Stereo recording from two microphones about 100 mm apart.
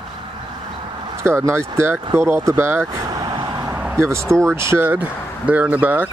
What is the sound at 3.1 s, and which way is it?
Vehicle, 40° right (ahead or behind).